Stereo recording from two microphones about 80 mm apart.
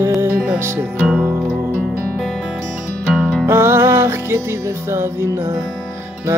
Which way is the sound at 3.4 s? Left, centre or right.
Right.